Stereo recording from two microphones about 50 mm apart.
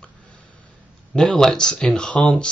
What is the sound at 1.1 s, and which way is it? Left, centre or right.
Speech, centre.